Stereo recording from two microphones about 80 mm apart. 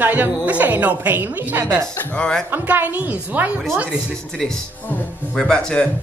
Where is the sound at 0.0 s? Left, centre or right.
Right.